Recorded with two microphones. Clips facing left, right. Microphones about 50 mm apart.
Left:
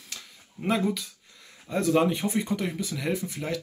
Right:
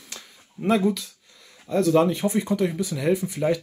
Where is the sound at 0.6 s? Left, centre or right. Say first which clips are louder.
Right 5 dB; centre.